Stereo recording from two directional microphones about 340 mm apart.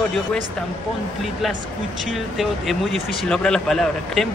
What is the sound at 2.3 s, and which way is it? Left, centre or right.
Speech, centre.